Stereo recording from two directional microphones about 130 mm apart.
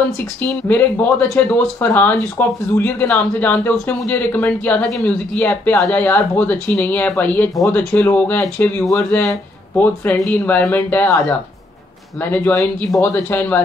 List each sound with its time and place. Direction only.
0.7 s speech: 15° left (ahead or behind)